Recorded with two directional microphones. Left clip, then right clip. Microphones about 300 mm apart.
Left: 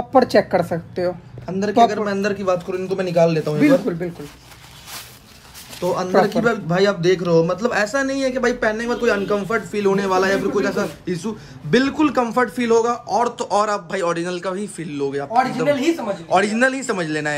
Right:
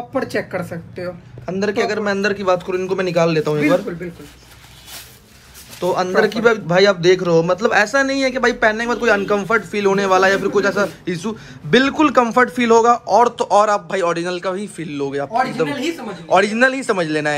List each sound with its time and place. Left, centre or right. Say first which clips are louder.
0.1 s speech: left 8 dB; left
1.4 s a man's voice: left 4 dB; centre
5.8 s a man's voice: right 1 dB; centre